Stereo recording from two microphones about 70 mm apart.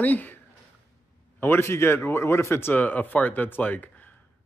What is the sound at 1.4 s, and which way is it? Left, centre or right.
A man's voice, left.